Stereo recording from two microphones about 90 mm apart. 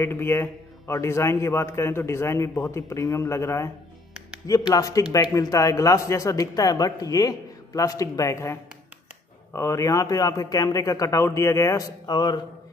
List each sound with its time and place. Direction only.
0.0 s speech: 25° left (ahead or behind); by 12.4 s 50° left (ahead or behind)